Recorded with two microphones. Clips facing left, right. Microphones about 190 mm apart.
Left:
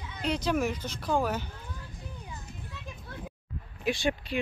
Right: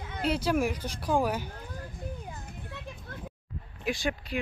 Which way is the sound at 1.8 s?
55° right (ahead or behind).